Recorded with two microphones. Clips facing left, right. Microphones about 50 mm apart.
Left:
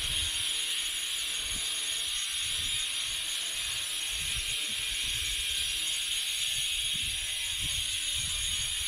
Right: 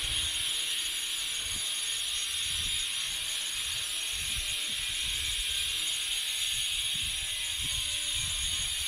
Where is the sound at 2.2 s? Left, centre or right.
Centre.